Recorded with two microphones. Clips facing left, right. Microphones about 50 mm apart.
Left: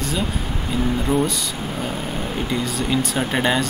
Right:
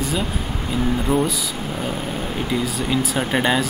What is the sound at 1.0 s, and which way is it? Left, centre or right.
Speech, centre.